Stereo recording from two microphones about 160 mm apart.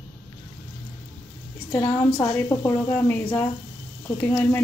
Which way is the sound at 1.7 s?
15° left (ahead or behind).